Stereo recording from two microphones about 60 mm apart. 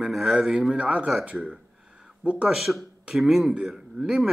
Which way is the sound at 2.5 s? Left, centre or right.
Centre.